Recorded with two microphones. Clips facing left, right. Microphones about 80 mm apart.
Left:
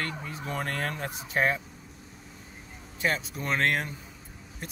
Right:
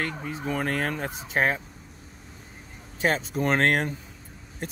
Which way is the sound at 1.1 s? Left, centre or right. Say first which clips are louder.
Right 2 dB; right.